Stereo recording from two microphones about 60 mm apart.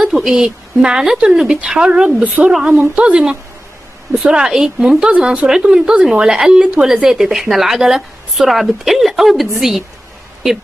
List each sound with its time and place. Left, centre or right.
0.0 s speech: centre; by 2.5 s right
2.5 s speech: centre
5.1 s speech: right
5.5 s a woman's voice: centre